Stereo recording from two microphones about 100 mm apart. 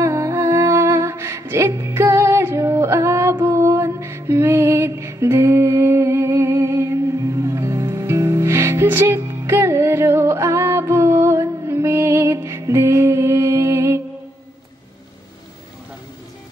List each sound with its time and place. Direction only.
0.0 s music: 30° right (ahead or behind)